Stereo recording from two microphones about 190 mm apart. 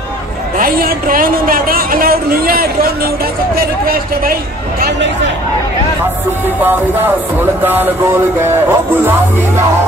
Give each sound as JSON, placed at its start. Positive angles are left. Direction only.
{"t": 0.6, "sound": "a woman's voice", "side_deg": -50}
{"t": 6.6, "sound": "speech", "side_deg": -10}